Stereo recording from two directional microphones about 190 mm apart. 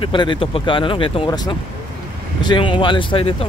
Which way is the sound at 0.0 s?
25° left (ahead or behind).